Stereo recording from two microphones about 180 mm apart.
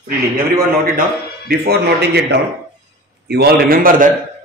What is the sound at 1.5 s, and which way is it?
A man's voice, 65° right (ahead or behind).